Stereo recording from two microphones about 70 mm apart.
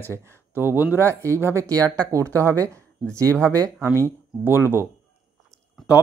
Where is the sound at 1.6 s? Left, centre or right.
Right.